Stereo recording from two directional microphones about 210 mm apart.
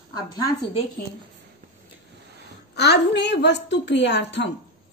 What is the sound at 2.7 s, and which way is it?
A woman's voice, 55° left (ahead or behind).